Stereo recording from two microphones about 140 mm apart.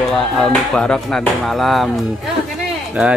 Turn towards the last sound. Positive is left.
turn(degrees=-10)  # may be behind; listen again after turning